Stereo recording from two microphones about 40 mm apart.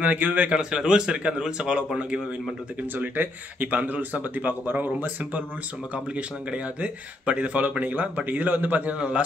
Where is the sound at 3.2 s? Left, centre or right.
Right.